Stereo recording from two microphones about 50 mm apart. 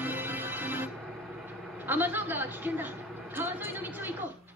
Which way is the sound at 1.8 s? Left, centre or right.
Right.